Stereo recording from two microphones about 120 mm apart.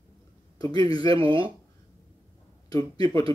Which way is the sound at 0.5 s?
30° left (ahead or behind).